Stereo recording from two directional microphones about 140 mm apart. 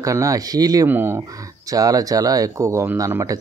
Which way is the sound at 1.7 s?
25° right (ahead or behind).